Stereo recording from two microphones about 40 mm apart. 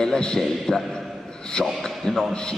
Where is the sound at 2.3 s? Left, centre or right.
Left.